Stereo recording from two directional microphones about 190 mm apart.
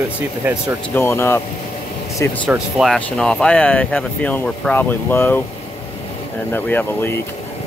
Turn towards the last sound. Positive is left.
turn(degrees=10)  # may be behind; listen again after turning